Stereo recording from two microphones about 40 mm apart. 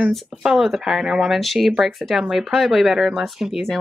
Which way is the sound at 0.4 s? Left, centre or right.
Centre.